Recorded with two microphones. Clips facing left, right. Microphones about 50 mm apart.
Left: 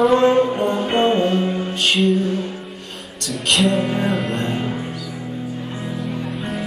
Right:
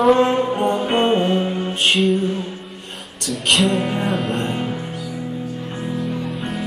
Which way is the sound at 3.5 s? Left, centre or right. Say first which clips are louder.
Even; centre.